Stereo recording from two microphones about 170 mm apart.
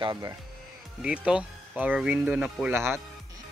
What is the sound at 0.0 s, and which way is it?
Speech, 20° right (ahead or behind).